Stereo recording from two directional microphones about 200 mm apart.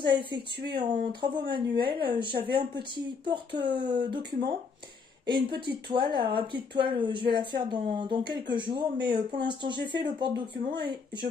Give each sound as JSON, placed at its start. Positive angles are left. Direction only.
{"t": 0.1, "sound": "speech", "side_deg": -25}